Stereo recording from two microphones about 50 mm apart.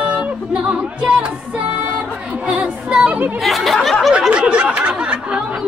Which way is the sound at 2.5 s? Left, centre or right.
Centre.